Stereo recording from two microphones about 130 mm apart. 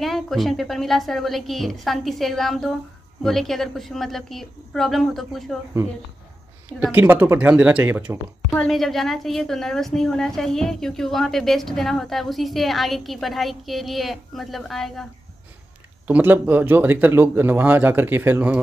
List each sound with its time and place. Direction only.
0.0 s a woman's voice: centre (ahead or behind)
6.8 s speech: 15° right (ahead or behind)
8.5 s a woman's voice: centre (ahead or behind)
16.1 s speech: 15° right (ahead or behind)